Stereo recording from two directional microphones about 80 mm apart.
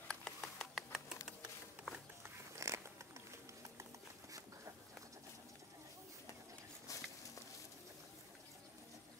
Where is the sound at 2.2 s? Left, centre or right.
Right.